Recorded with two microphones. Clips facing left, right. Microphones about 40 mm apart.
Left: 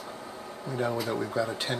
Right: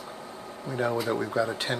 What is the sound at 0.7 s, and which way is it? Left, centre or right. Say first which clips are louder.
Speech: right 2 dB; centre.